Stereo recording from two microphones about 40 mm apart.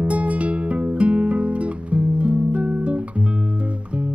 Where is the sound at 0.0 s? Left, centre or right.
Right.